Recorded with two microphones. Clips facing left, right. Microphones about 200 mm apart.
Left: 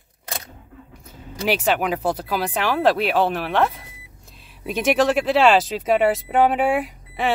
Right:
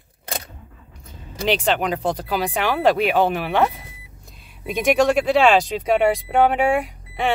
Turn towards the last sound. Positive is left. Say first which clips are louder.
# right 1 dB
turn(degrees=0)  # may be behind; listen again after turning